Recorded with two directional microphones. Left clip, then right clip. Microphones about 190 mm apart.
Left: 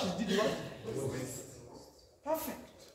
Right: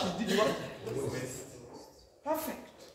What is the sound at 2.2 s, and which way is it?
Speech, centre (ahead or behind).